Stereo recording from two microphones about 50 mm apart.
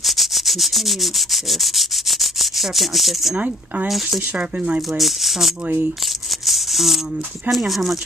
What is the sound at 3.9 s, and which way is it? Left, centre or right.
Speech, centre.